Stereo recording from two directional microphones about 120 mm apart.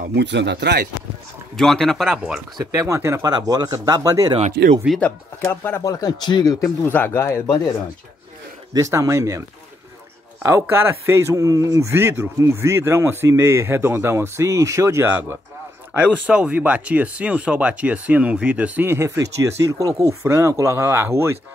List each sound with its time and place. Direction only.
1.6 s speech: 5° left (ahead or behind)
2.6 s a man's voice: 25° right (ahead or behind)
3.3 s speech: 35° right (ahead or behind)
4.4 s speech: 55° right (ahead or behind)
5.4 s speech: 20° left (ahead or behind)
5.8 s speech: 30° left (ahead or behind)
6.6 s speech: 20° left (ahead or behind)
8.7 s a man's voice: 25° right (ahead or behind)
10.4 s a man's voice: 20° right (ahead or behind)